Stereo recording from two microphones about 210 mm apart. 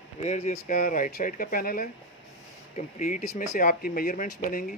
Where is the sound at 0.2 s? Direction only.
30° left (ahead or behind).